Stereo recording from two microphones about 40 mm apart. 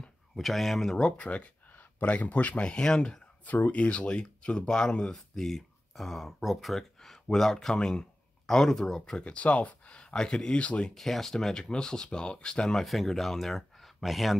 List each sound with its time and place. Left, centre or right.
0.4 s speech: centre
1.1 s speech: left
2.6 s speech: left
3.7 s speech: left; by 7.7 s centre
7.7 s speech: centre
9.2 s speech: left
11.0 s speech: centre
12.7 s speech: centre